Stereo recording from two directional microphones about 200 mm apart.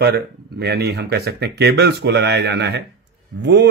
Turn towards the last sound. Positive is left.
turn(degrees=-60)  # may be behind; listen again after turning